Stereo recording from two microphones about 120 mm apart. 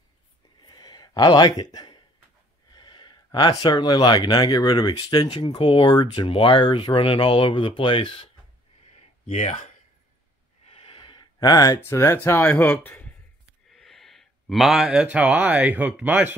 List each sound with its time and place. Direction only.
0.6 s a sound: 35° left (ahead or behind)
2.7 s speech: 35° left (ahead or behind)
9.3 s speech: 70° left (ahead or behind)
10.7 s a sound: 50° left (ahead or behind)
11.3 s speech: 30° left (ahead or behind)
11.8 s speech: 20° left (ahead or behind)
13.7 s speech: centre (ahead or behind); by 16.3 s 15° right (ahead or behind)